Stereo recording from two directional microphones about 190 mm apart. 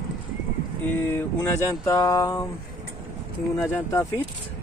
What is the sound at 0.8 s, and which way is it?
Speech, 10° left (ahead or behind).